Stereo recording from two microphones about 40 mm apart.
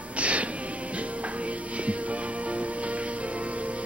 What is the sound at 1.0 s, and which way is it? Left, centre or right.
Music, right.